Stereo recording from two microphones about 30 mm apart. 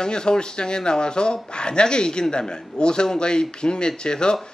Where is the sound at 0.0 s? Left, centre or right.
Left.